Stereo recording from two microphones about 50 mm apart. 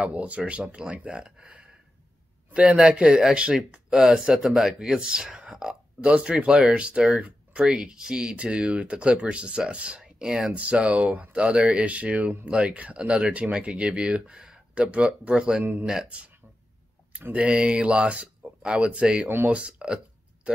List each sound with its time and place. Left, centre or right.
0.0 s speech: right; by 4.7 s centre
4.7 s speech: centre
7.2 s a sound: right
7.6 s speech: centre
10.5 s speech: right
17.3 s speech: right
19.2 s speech: right
19.5 s speech: right